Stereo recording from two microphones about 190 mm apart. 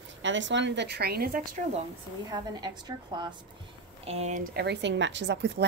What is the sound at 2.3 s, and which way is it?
A woman's voice, 20° right (ahead or behind).